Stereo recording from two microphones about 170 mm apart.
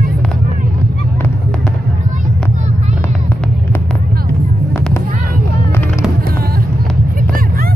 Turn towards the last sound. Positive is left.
turn(degrees=-55)  # may be behind; listen again after turning